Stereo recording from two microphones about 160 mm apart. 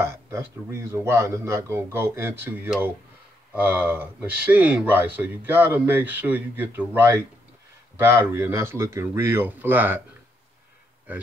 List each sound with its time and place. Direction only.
0.0 s speech: 15° right (ahead or behind)